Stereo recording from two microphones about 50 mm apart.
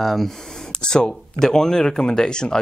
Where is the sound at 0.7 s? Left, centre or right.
Centre.